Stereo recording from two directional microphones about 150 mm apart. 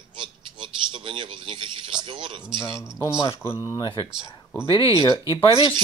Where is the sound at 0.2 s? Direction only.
35° right (ahead or behind).